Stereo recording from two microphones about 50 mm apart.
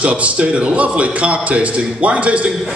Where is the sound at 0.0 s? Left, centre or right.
Right.